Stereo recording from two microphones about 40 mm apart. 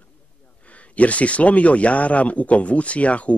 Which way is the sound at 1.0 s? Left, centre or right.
Left.